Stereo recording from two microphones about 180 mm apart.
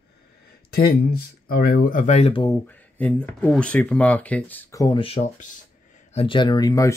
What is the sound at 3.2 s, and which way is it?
Speech, 5° left (ahead or behind).